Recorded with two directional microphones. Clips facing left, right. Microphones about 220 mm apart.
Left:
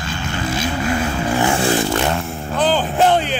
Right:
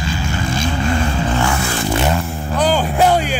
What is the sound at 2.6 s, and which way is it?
Music, 10° right (ahead or behind).